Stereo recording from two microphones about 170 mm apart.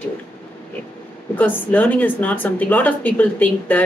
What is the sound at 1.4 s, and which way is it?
Speech, 10° left (ahead or behind).